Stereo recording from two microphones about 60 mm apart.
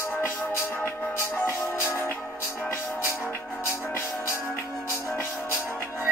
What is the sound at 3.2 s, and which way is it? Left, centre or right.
Music, left.